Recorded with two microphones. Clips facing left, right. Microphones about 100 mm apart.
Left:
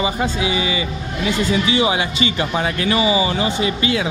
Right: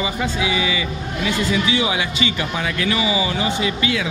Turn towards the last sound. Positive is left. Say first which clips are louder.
# left 2 dB
turn(degrees=35)  # may be behind; listen again after turning